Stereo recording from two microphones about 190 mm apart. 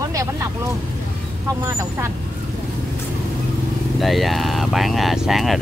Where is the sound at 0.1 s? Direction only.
15° right (ahead or behind).